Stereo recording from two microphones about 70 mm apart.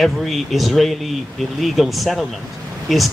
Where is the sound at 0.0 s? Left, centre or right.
Centre.